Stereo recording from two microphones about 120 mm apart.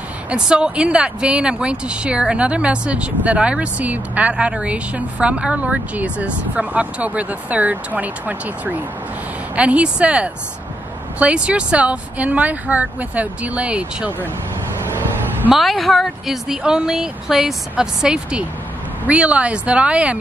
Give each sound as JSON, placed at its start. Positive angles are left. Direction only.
{"t": 0.3, "sound": "speech", "side_deg": -10}
{"t": 14.9, "sound": "vehicle", "side_deg": -20}
{"t": 15.5, "sound": "speech", "side_deg": 0}